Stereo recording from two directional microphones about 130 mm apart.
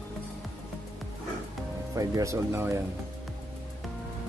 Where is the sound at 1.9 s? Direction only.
25° right (ahead or behind).